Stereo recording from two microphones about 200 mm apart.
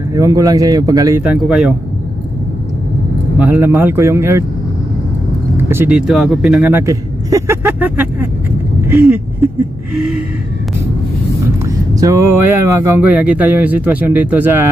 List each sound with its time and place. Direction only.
0.1 s speech: 15° right (ahead or behind)
1.2 s speech: 5° right (ahead or behind)
3.3 s speech: 10° right (ahead or behind)
5.7 s speech: 10° right (ahead or behind)
11.6 s speech: 15° right (ahead or behind)